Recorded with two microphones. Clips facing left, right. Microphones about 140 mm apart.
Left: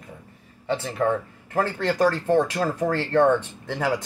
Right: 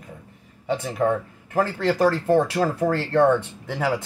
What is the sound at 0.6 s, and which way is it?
Speech, 10° right (ahead or behind).